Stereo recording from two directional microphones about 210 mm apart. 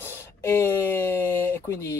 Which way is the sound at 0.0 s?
10° left (ahead or behind).